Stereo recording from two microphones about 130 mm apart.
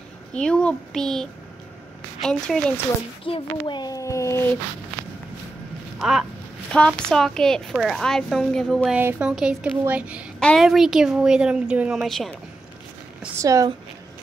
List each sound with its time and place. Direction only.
0.3 s a child's voice: 5° left (ahead or behind)
3.3 s a child's voice: 40° left (ahead or behind); by 4.5 s 20° left (ahead or behind)
5.9 s a sound: 5° right (ahead or behind)
6.7 s a woman's voice: 5° left (ahead or behind); by 10.2 s 10° right (ahead or behind)
10.4 s a woman's voice: centre (ahead or behind)
12.0 s a woman's voice: centre (ahead or behind)
13.4 s speech: 25° right (ahead or behind)